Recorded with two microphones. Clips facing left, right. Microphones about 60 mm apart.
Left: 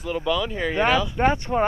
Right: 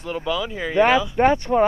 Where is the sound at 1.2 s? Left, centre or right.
Right.